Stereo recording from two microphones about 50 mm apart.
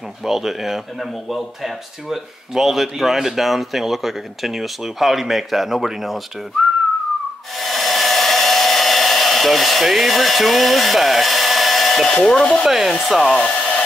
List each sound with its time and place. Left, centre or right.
0.2 s speech: centre
7.5 s hair dryer: centre
12.1 s speech: centre
12.6 s speech: centre
13.3 s hair dryer: centre